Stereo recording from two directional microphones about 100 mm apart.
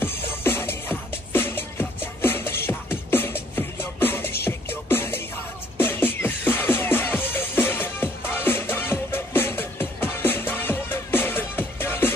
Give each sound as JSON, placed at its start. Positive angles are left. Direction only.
{"t": 0.0, "sound": "music", "side_deg": 20}